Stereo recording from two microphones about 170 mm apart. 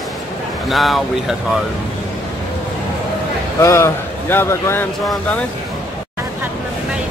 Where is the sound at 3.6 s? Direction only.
15° left (ahead or behind).